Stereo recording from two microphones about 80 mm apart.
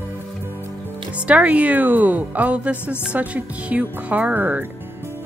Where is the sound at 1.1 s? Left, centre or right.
Centre.